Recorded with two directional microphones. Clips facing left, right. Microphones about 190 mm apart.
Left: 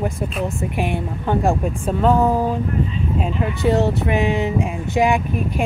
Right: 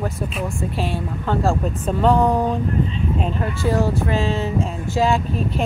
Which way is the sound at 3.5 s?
20° left (ahead or behind).